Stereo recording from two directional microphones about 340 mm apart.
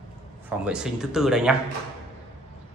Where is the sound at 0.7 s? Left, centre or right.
Centre.